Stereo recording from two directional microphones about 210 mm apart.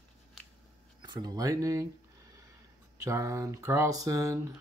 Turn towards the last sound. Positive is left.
turn(degrees=-15)  # may be behind; listen again after turning